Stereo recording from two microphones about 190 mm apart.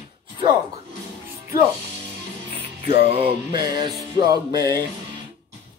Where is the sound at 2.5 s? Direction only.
30° right (ahead or behind).